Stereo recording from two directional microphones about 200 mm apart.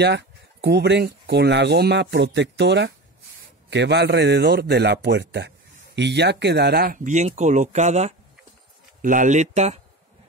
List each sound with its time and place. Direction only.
0.0 s speech: 55° right (ahead or behind); by 9.8 s 35° right (ahead or behind)